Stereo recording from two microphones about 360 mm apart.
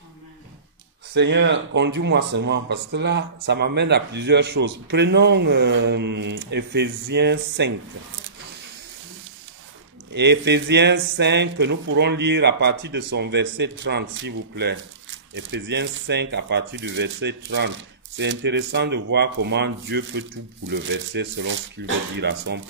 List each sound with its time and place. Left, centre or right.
1.1 s speech: right
10.1 s speech: right